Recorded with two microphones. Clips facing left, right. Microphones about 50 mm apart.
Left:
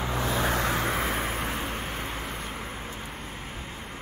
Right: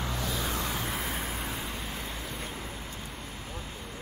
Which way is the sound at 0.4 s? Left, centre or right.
Left.